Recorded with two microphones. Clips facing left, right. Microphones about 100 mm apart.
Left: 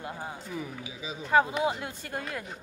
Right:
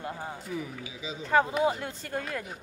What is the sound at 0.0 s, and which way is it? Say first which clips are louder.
A woman's voice: right 1 dB; 15° left (ahead or behind).